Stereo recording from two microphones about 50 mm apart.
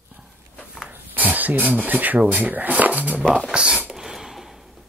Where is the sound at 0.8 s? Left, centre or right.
Right.